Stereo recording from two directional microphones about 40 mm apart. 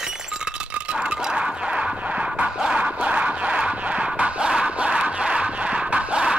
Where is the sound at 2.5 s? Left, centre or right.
Right.